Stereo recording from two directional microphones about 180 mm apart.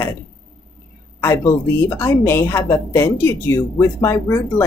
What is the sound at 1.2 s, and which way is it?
A woman's voice, 15° left (ahead or behind).